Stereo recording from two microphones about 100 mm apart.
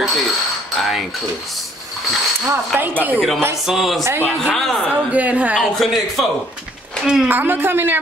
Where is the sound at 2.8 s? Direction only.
20° right (ahead or behind).